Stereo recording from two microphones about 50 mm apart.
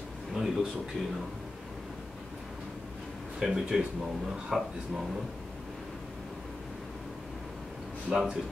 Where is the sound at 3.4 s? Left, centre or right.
Centre.